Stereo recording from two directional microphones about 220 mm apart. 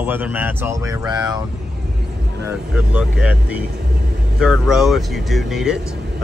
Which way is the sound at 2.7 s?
5° right (ahead or behind).